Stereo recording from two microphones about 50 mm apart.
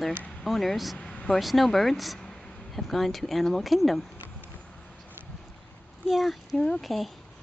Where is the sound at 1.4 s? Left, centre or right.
Centre.